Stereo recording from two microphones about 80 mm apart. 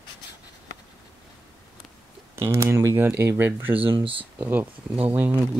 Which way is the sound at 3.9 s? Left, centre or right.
Right.